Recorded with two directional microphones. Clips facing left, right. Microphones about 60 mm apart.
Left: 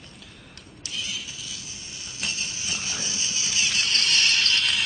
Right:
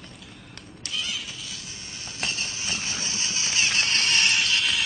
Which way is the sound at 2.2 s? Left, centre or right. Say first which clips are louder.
Right 2 dB; right.